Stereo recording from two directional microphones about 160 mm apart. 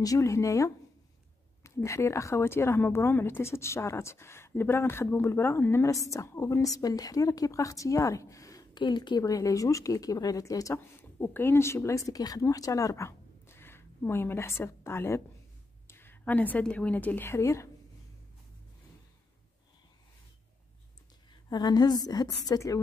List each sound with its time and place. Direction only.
0.0 s a woman's voice: 20° left (ahead or behind)
21.3 s a woman's voice: 25° left (ahead or behind)